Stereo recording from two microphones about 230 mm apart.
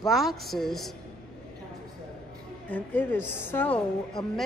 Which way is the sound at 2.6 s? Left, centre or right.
Centre.